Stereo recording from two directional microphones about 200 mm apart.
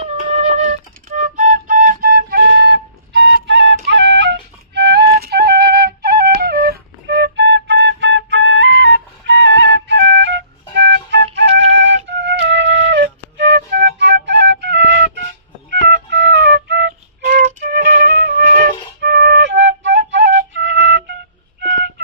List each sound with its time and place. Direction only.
0.0 s flute: 35° right (ahead or behind); by 11.2 s 60° right (ahead or behind)
11.3 s music: 60° right (ahead or behind)
11.7 s flute: 60° right (ahead or behind)
17.4 s flute: 35° right (ahead or behind); by 21.0 s 60° right (ahead or behind)